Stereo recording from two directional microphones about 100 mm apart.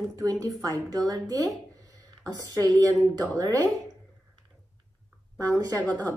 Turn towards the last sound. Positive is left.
turn(degrees=-35)  # may be behind; listen again after turning